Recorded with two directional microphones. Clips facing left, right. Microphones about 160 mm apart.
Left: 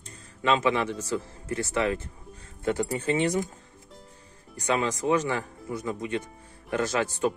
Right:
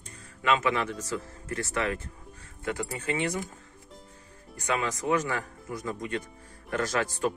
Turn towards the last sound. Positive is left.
turn(degrees=25)  # may be behind; listen again after turning